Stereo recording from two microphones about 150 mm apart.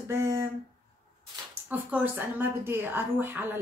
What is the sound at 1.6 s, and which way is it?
A woman's voice, 10° right (ahead or behind).